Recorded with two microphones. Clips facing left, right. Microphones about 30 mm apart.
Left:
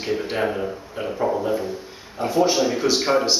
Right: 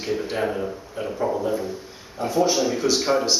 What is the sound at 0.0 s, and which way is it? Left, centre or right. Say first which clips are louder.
Speech: left 1 dB; centre.